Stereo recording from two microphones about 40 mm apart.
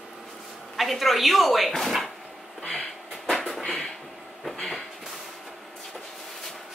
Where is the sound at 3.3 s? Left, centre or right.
Centre.